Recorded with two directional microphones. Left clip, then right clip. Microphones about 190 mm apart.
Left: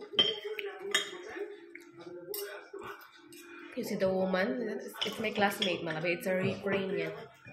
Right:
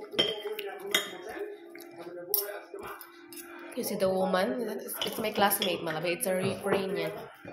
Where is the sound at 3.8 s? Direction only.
10° left (ahead or behind).